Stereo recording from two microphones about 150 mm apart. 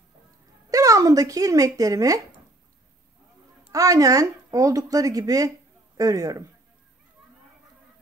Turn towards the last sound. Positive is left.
turn(degrees=-25)  # may be behind; listen again after turning